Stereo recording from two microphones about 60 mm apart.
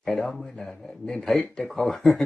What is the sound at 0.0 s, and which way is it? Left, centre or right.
Speech, centre.